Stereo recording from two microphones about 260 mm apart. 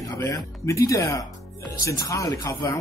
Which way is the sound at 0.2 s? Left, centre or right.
Centre.